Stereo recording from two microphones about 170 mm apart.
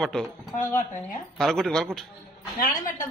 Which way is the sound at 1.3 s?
Centre (ahead or behind).